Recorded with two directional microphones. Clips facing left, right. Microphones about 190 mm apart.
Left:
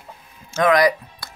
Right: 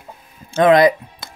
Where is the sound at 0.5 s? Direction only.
25° right (ahead or behind).